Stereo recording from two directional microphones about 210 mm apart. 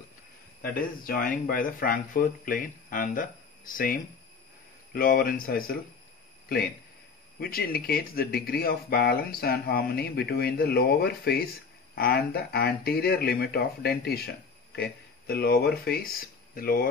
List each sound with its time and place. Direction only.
0.6 s speech: 45° left (ahead or behind)
7.3 s speech: 45° left (ahead or behind)